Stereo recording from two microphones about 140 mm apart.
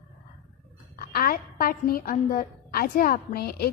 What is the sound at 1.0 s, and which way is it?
A woman's voice, 90° left.